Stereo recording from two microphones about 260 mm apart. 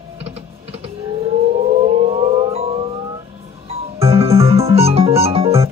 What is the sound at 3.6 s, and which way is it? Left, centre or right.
Music, right.